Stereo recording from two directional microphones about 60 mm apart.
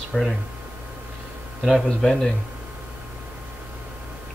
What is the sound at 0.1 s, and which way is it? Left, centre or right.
Speech, centre.